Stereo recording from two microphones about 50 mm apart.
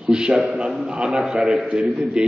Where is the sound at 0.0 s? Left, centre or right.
Centre.